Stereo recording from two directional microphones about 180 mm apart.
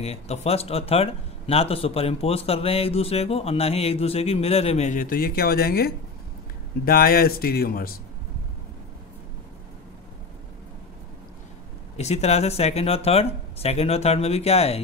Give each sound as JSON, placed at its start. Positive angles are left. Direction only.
{"t": 0.0, "sound": "speech", "side_deg": 35}
{"t": 12.0, "sound": "speech", "side_deg": 35}